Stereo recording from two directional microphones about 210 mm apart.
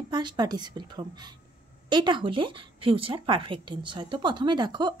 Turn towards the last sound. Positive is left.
turn(degrees=-20)  # may be behind; listen again after turning